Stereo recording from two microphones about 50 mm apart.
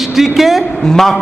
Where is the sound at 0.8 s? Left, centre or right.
Centre.